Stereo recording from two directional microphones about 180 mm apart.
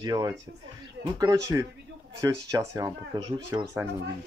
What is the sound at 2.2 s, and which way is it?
Speech, 20° right (ahead or behind).